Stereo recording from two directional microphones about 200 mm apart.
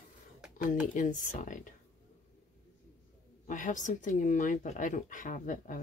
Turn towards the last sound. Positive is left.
turn(degrees=40)  # may be behind; listen again after turning